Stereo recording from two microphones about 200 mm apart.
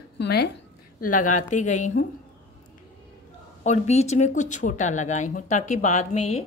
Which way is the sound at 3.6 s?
35° left (ahead or behind).